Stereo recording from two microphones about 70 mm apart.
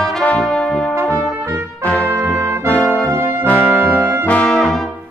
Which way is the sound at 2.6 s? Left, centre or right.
Centre.